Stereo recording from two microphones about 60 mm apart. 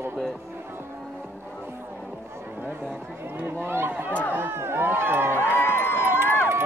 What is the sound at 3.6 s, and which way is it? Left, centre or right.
Run, right.